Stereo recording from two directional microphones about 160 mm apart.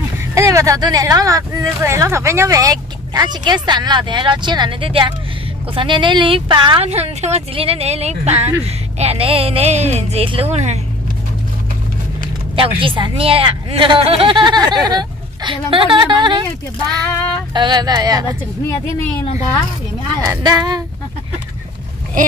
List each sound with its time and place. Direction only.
0.2 s speech: 15° right (ahead or behind); by 10.8 s 45° right (ahead or behind)
12.5 s speech: 35° right (ahead or behind)
17.6 s speech: 25° right (ahead or behind)
20.2 s speech: 25° right (ahead or behind)